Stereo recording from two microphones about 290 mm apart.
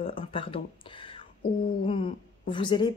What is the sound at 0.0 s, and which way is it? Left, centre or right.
Speech, centre.